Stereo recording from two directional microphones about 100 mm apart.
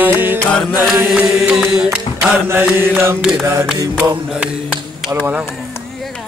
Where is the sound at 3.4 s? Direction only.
25° right (ahead or behind).